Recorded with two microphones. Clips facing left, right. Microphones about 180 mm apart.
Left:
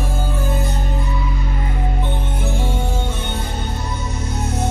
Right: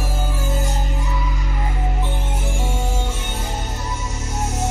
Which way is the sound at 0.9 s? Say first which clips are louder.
Left 2 dB; 25° left (ahead or behind).